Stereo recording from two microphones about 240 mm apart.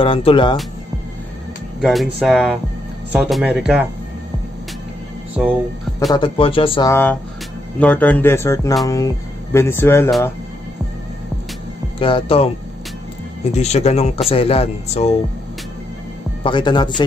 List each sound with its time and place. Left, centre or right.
0.0 s speech: left
1.8 s speech: centre
6.1 s speech: left
6.9 s speech: centre
12.0 s speech: left
13.6 s speech: left
16.4 s speech: centre